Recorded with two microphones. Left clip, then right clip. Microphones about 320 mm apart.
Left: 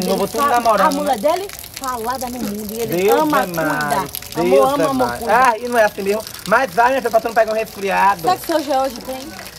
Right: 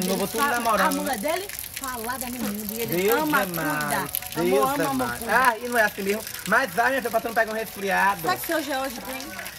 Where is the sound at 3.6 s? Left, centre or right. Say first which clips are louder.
Left 7 dB; centre.